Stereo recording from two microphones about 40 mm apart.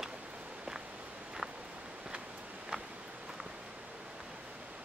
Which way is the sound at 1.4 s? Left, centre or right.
Centre.